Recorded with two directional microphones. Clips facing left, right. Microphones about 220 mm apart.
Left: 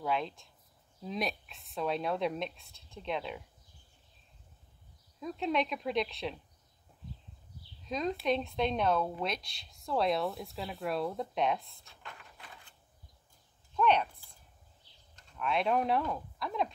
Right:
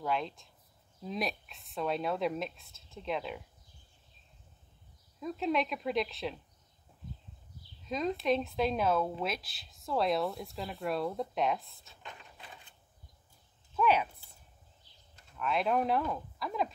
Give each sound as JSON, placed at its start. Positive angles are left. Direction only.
{"t": 0.0, "sound": "speech", "side_deg": 0}
{"t": 5.2, "sound": "speech", "side_deg": 0}
{"t": 7.8, "sound": "speech", "side_deg": 0}
{"t": 11.8, "sound": "a sound", "side_deg": -20}
{"t": 13.7, "sound": "speech", "side_deg": -5}
{"t": 15.1, "sound": "speech", "side_deg": 0}